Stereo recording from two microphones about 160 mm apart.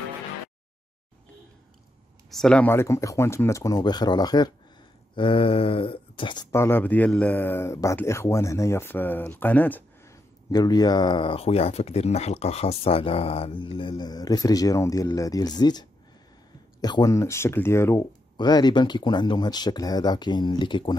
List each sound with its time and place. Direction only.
2.3 s a man's voice: 5° left (ahead or behind); by 4.5 s 25° left (ahead or behind)
5.1 s a sound: 30° left (ahead or behind)
6.5 s a man's voice: 15° left (ahead or behind); by 20.9 s 30° left (ahead or behind)